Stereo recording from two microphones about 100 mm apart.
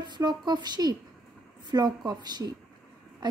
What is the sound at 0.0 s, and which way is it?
A woman's voice, 45° right (ahead or behind).